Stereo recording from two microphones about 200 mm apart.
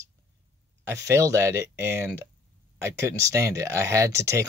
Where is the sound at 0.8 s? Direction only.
15° right (ahead or behind).